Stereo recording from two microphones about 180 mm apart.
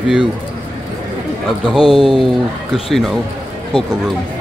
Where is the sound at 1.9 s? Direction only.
Centre (ahead or behind).